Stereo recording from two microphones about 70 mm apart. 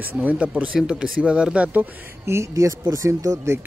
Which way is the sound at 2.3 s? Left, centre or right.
Right.